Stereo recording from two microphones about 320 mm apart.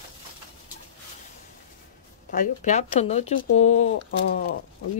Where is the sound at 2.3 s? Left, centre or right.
Left.